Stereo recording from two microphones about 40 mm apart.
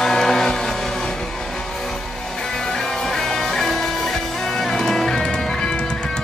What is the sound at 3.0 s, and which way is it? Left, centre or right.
Music, centre.